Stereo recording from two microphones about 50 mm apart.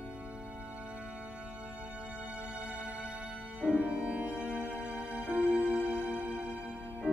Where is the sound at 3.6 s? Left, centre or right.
Right.